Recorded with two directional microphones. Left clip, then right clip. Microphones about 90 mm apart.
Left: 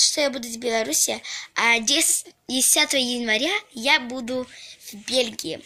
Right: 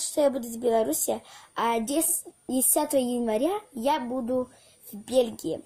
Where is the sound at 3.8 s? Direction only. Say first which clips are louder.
Left 5 dB; 10° left (ahead or behind).